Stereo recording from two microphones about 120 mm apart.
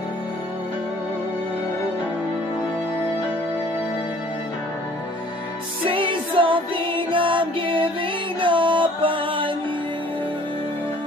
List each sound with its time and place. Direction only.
5.9 s music: 45° right (ahead or behind)